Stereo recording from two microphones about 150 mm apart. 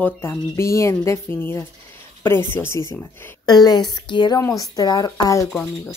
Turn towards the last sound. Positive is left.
turn(degrees=15)  # may be behind; listen again after turning